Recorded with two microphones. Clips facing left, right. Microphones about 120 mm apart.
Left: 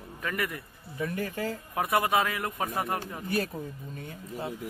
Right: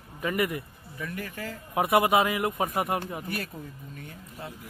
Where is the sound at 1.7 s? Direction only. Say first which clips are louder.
Right 5 dB; 25° right (ahead or behind).